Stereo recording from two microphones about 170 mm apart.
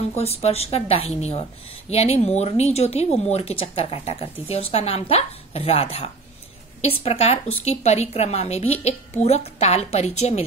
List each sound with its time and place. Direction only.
0.1 s speech: 40° left (ahead or behind)